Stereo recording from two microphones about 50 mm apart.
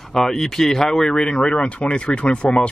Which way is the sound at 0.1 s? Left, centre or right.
Centre.